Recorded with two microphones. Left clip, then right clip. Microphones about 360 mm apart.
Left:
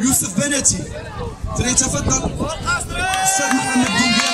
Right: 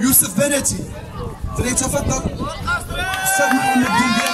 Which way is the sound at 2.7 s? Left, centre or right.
Centre.